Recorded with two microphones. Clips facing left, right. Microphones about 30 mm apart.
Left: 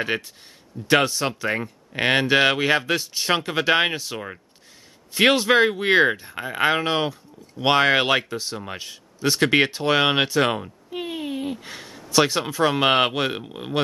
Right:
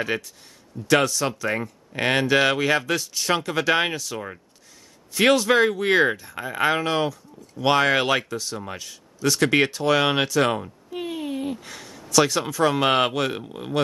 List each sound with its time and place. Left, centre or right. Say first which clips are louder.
0.1 s speech: left 1 dB; left